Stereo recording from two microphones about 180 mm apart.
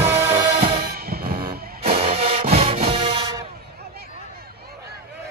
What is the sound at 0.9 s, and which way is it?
Music, 60° right (ahead or behind).